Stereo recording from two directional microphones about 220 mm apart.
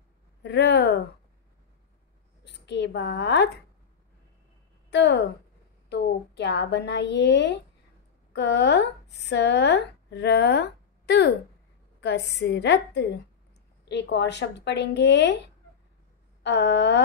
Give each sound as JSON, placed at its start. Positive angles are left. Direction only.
{"t": 0.4, "sound": "speech", "side_deg": 50}
{"t": 2.4, "sound": "a woman's voice", "side_deg": 50}
{"t": 4.9, "sound": "a woman's voice", "side_deg": 50}
{"t": 16.4, "sound": "a woman's voice", "side_deg": 50}